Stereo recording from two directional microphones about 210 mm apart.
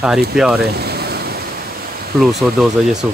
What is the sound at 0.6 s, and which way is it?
Waves, 50° right (ahead or behind).